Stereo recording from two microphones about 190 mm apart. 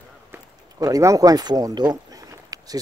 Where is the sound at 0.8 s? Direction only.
15° right (ahead or behind).